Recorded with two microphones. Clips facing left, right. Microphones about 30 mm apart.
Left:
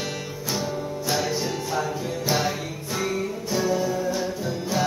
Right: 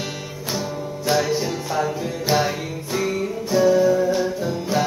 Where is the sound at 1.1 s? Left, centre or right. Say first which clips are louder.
Right 5 dB; centre.